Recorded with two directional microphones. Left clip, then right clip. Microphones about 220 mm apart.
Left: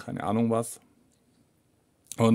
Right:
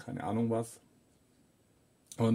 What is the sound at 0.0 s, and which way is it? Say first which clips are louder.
Speech: left 7 dB; 35° left (ahead or behind).